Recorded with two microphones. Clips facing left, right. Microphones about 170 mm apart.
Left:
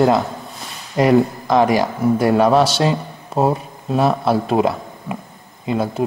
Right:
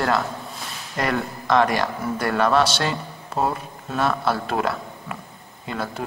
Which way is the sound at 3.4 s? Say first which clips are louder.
Left 6 dB; 35° left (ahead or behind).